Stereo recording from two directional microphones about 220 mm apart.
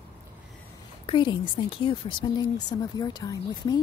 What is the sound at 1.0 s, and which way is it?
A woman's voice, 20° left (ahead or behind).